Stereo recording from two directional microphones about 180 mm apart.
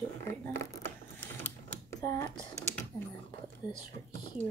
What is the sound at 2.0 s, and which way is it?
Computer keyboard, 20° left (ahead or behind).